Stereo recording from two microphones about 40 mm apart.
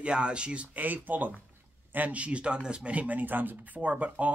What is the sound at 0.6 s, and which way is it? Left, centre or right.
Speech, right.